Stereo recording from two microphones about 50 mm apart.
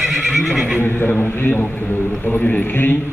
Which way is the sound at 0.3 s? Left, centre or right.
Centre.